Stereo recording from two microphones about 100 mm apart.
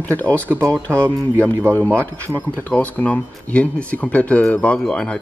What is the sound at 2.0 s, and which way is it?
Speech, 20° left (ahead or behind).